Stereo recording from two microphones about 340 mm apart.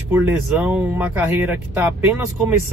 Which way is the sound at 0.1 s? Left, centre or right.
Centre.